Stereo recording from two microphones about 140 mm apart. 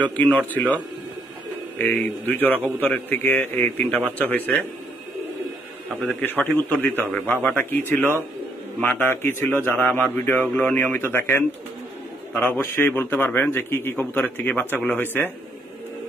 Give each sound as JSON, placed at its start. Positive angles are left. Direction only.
{"t": 0.0, "sound": "a man's voice", "side_deg": 10}
{"t": 1.8, "sound": "a man's voice", "side_deg": 10}
{"t": 6.3, "sound": "a man's voice", "side_deg": 10}